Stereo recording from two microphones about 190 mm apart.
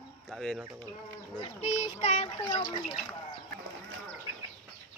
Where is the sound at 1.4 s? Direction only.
35° left (ahead or behind).